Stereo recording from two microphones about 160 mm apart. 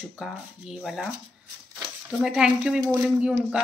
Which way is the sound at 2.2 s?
5° right (ahead or behind).